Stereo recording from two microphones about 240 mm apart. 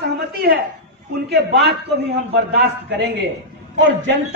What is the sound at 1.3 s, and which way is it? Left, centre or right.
A man's voice, right.